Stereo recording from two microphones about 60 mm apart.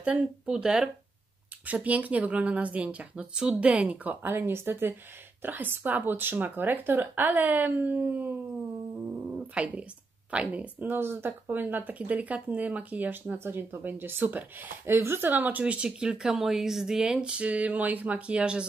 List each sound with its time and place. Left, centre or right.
0.0 s speech: centre
1.7 s speech: right
9.5 s speech: centre
15.6 s speech: centre